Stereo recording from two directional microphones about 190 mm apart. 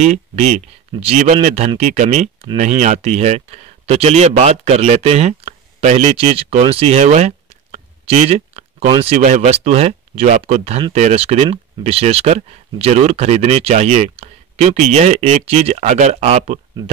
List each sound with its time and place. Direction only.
0.0 s speech: 40° right (ahead or behind)